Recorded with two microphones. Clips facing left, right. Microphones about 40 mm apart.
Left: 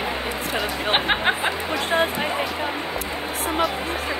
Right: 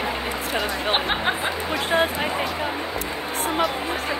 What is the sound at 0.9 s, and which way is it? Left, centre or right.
Speech, left.